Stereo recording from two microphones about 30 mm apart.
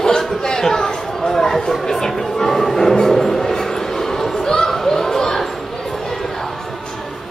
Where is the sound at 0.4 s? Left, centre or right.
Left.